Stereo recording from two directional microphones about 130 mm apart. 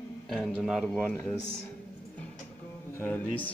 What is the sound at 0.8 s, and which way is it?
Speech, 10° left (ahead or behind).